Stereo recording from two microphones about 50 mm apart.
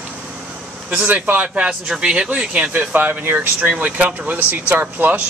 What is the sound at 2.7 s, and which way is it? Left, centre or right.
Speech, right.